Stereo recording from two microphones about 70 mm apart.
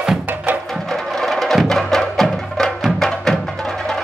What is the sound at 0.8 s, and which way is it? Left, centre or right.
Music, centre.